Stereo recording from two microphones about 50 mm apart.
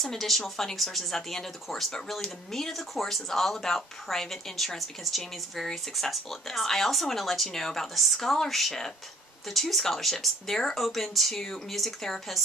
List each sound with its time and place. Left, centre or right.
0.0 s speech: centre